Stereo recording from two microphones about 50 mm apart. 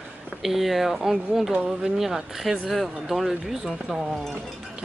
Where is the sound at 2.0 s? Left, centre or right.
Centre.